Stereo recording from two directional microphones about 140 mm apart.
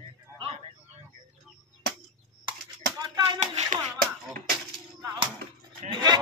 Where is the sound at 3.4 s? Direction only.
50° right (ahead or behind).